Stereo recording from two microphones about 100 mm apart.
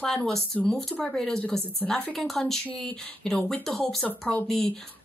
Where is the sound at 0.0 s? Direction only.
5° left (ahead or behind).